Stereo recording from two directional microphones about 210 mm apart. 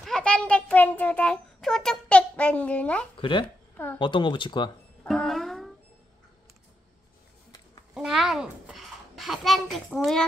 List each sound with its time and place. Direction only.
0.0 s a child's voice: 5° left (ahead or behind)
3.2 s speech: 25° left (ahead or behind)
3.7 s speech: 10° left (ahead or behind)
4.0 s speech: 20° left (ahead or behind)
5.0 s music: centre (ahead or behind)
7.9 s a child's voice: centre (ahead or behind)